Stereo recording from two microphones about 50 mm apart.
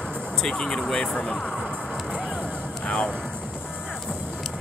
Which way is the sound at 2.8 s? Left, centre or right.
Left.